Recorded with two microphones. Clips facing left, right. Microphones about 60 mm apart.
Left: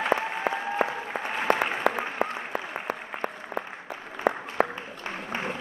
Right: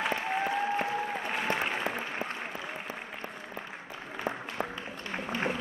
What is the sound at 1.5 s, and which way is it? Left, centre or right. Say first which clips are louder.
Applause: left 9 dB; left.